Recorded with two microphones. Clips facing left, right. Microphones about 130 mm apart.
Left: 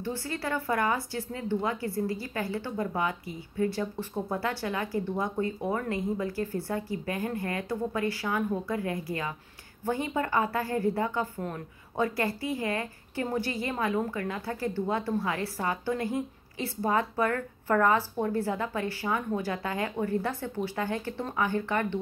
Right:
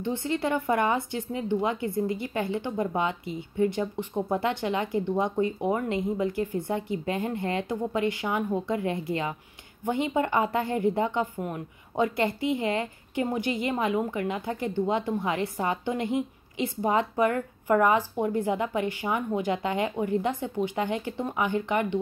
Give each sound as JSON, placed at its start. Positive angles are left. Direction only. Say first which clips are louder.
{"t": 0.0, "sound": "speech", "louder": "right 5 dB", "side_deg": -20}